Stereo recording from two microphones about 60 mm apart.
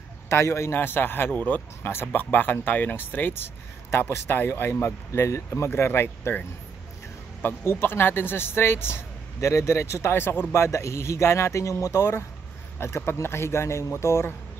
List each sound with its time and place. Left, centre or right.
0.3 s speech: left
7.4 s speech: left
10.1 s speech: left
10.5 s speech: left
12.0 s speech: left